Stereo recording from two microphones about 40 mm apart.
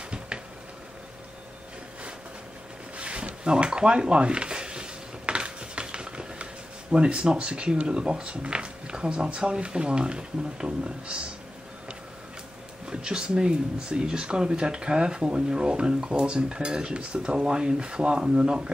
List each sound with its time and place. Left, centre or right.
3.0 s speech: right
12.9 s speech: right